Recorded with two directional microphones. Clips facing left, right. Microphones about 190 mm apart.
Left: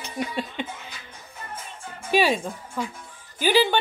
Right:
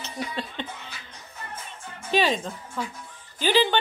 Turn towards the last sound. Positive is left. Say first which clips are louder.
# left 2 dB
turn(degrees=10)  # may be behind; listen again after turning